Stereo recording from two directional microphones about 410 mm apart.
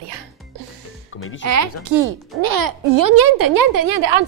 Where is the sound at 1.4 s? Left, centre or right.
Right.